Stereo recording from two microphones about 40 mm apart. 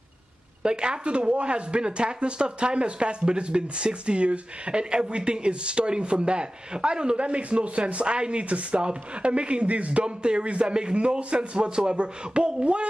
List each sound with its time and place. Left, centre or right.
0.6 s a woman's voice: right